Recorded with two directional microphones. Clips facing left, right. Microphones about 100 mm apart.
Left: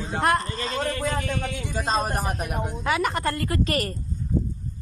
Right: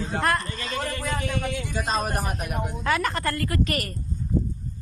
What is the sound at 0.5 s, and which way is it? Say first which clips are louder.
A man's voice: left 3 dB; 35° left (ahead or behind).